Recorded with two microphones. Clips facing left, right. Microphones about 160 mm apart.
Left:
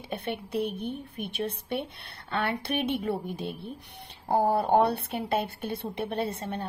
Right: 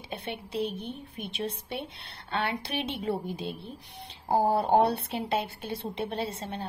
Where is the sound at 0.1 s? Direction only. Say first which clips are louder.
Left 3 dB; 55° left (ahead or behind).